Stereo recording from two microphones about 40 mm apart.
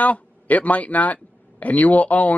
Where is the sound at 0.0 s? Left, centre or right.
Left.